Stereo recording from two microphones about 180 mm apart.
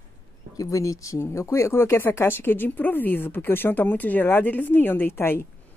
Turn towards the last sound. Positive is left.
turn(degrees=10)  # may be behind; listen again after turning